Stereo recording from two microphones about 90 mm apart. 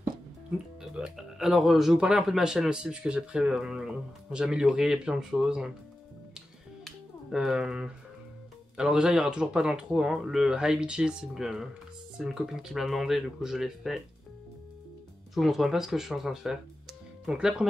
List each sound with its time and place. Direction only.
0.9 s speech: 5° right (ahead or behind)
6.8 s finger snapping: centre (ahead or behind)
8.7 s speech: 10° right (ahead or behind)
15.3 s speech: centre (ahead or behind)